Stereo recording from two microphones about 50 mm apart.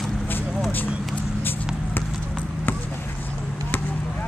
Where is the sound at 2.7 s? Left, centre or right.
Left.